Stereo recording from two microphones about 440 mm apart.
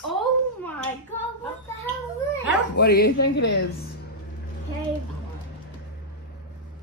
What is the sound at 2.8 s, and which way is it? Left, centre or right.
Speech, left.